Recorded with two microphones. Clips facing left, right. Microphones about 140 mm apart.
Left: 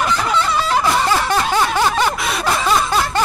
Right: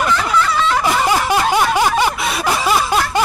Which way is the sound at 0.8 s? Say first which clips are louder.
Right 1 dB; 15° right (ahead or behind).